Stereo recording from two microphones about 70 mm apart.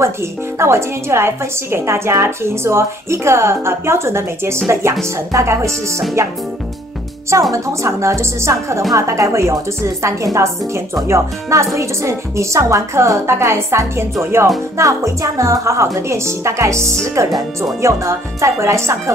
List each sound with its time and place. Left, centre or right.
0.0 s a woman's voice: right
7.5 s a woman's voice: right
14.8 s speech: right